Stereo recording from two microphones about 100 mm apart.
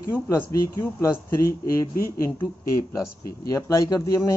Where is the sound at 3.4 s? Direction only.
30° left (ahead or behind).